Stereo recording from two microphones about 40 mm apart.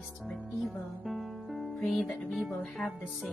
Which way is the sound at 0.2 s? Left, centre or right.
Centre.